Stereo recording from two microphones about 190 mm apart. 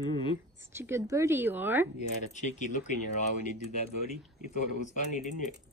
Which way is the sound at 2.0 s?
40° left (ahead or behind).